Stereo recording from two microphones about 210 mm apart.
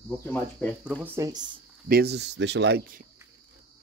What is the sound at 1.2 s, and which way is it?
Speech, 20° right (ahead or behind).